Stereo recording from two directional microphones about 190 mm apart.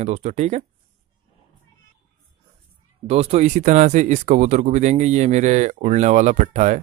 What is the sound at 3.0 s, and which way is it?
Speech, 30° right (ahead or behind).